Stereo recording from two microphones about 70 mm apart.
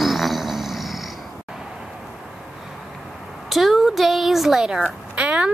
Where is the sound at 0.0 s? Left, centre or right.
Centre.